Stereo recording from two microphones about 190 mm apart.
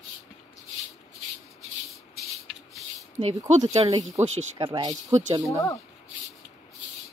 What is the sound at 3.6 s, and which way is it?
A child's voice, 35° right (ahead or behind).